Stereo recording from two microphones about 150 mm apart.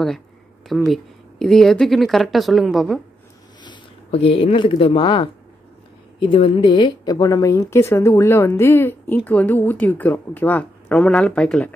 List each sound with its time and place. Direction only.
0.8 s speech: centre (ahead or behind)
4.1 s speech: 40° left (ahead or behind); by 11.7 s 5° left (ahead or behind)